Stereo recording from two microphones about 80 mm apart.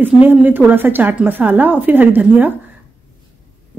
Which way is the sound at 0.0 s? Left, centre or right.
Right.